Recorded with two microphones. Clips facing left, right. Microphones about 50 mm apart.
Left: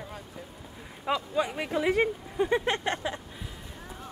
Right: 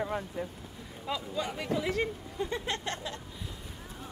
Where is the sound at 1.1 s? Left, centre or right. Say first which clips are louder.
Left 6 dB; left.